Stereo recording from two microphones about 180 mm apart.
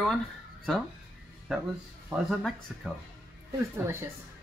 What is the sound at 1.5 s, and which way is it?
Speech, centre (ahead or behind).